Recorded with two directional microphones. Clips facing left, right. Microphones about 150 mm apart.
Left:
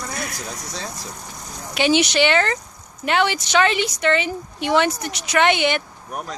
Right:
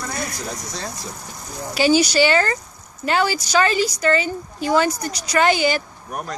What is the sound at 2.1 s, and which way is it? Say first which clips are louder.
Speech: right 1 dB; 5° right (ahead or behind).